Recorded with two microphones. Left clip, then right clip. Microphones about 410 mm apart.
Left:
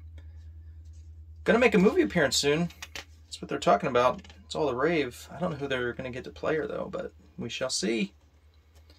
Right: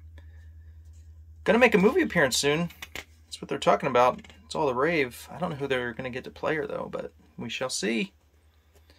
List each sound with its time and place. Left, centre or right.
1.4 s speech: centre
2.8 s a sound: centre
3.3 s speech: centre